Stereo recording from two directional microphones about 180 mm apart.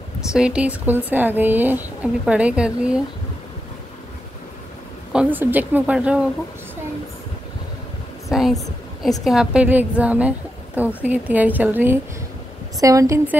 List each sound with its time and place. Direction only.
0.3 s a woman's voice: 5° right (ahead or behind)
5.1 s a woman's voice: 10° right (ahead or behind)
8.3 s a woman's voice: centre (ahead or behind); by 13.4 s 15° right (ahead or behind)